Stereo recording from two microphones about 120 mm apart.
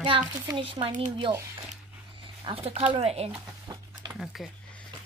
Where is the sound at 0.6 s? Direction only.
45° right (ahead or behind).